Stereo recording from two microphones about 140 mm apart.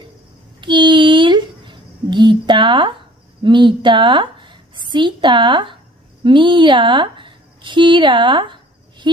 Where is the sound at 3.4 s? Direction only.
35° right (ahead or behind).